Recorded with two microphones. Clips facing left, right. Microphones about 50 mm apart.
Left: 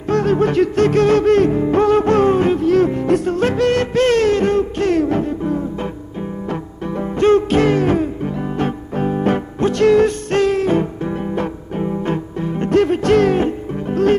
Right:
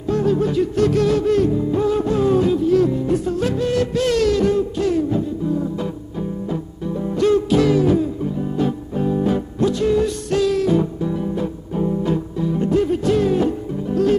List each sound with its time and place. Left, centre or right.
0.1 s music: left
7.2 s music: left
13.4 s music: left